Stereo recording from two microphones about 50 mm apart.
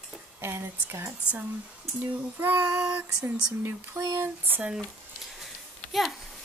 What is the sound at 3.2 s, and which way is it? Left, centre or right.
Speech, right.